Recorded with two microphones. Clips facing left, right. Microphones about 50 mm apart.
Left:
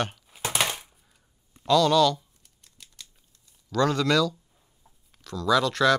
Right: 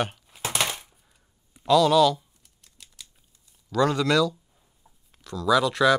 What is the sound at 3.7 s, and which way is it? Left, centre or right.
Speech, centre.